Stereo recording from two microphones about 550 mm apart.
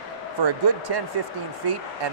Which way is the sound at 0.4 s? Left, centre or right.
Right.